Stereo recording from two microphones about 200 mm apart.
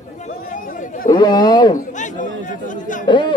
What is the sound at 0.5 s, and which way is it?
Chatter, 40° left (ahead or behind).